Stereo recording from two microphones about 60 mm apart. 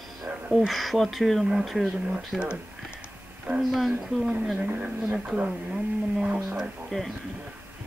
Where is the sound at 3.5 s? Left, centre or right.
Centre.